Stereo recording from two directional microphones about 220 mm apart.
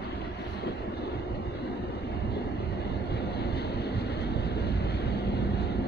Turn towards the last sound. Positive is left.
turn(degrees=45)  # may be behind; listen again after turning